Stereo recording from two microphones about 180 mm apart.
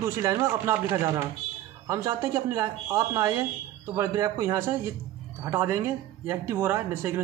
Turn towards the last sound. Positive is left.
turn(degrees=-15)  # may be behind; listen again after turning